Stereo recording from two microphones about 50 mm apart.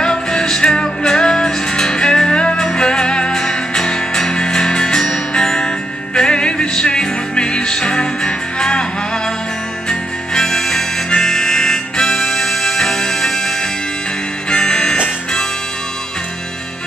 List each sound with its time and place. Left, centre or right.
0.0 s music: centre
9.8 s harmonica: centre
14.5 s music: centre